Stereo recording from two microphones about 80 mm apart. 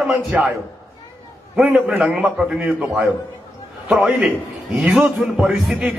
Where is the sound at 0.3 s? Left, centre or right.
Centre.